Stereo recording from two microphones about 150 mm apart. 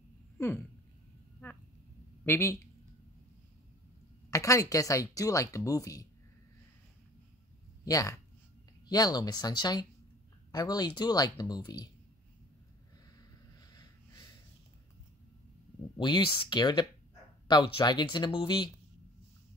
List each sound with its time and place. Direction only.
2.2 s speech: 15° left (ahead or behind)
4.3 s speech: 20° left (ahead or behind)
7.8 s speech: 20° left (ahead or behind)
16.0 s speech: 30° left (ahead or behind)